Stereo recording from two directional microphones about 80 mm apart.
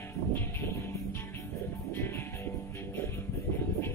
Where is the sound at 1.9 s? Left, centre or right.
Left.